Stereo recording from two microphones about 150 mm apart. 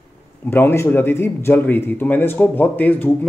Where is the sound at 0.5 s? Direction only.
15° left (ahead or behind).